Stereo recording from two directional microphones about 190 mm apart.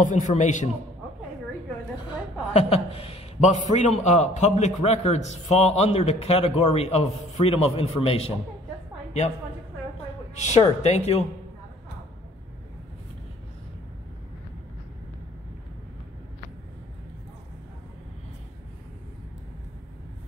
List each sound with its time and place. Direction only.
0.0 s a man's voice: 40° left (ahead or behind)
2.5 s a man's voice: 30° left (ahead or behind)
10.3 s a man's voice: 35° left (ahead or behind)